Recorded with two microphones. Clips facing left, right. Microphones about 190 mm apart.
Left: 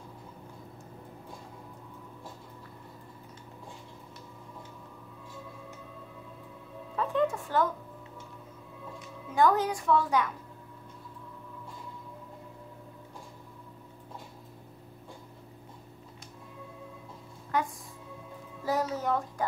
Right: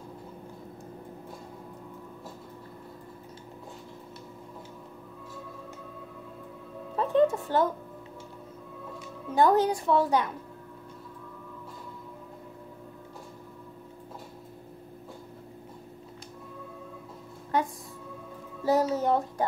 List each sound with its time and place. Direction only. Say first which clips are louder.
7.0 s speech: right 5 dB; 30° right (ahead or behind)
9.3 s speech: right 3 dB; 30° right (ahead or behind)
18.7 s music: right 5 dB; 30° right (ahead or behind)